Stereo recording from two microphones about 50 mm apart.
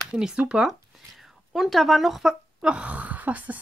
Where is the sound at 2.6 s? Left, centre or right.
Right.